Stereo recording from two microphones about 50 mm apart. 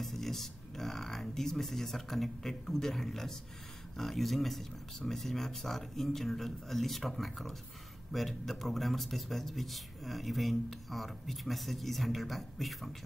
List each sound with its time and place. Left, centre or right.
0.0 s speech: centre